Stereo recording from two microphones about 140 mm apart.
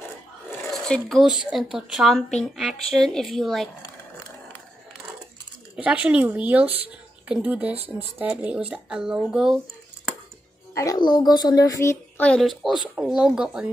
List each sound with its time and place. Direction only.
0.7 s speech: 5° left (ahead or behind)
5.9 s speech: 10° right (ahead or behind)
10.7 s music: 20° left (ahead or behind)
11.0 s a child's voice: 30° left (ahead or behind)
12.3 s speech: centre (ahead or behind)